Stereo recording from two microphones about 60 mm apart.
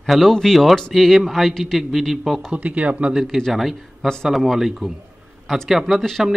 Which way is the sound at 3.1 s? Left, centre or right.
Centre.